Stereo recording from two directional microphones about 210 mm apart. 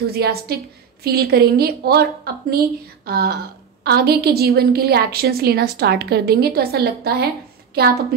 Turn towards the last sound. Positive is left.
turn(degrees=-50)  # may be behind; listen again after turning